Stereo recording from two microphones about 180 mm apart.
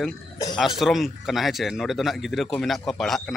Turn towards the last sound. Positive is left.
turn(degrees=0)  # may be behind; listen again after turning